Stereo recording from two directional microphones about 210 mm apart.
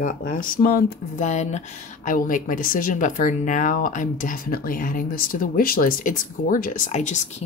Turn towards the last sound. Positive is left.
turn(degrees=35)  # may be behind; listen again after turning